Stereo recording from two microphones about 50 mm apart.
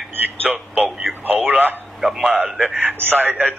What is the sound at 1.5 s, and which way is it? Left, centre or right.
Speech, right.